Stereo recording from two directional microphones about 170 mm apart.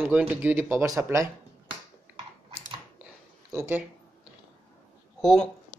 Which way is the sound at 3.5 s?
15° right (ahead or behind).